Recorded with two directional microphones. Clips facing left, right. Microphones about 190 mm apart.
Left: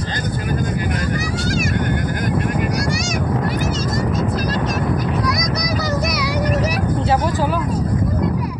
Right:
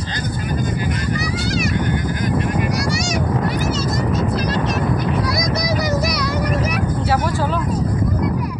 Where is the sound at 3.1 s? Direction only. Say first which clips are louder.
Right 1 dB; 50° left (ahead or behind).